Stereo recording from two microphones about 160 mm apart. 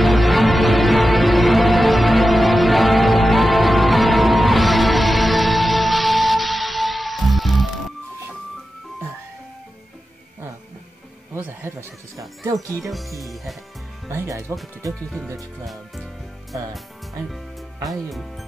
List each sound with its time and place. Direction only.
0.0 s music: centre (ahead or behind)
11.3 s neigh: 10° right (ahead or behind)
12.7 s speech: centre (ahead or behind)
14.0 s music: 20° right (ahead or behind)
14.9 s speech: 5° left (ahead or behind)